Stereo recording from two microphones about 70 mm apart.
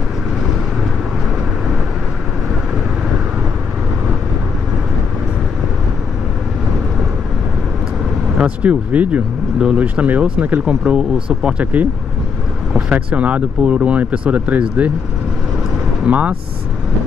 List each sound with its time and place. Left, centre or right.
8.4 s speech: centre
16.1 s speech: centre